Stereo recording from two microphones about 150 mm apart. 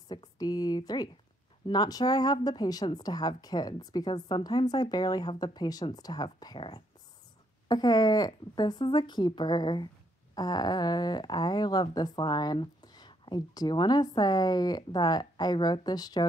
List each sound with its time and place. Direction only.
0.1 s speech: 25° left (ahead or behind)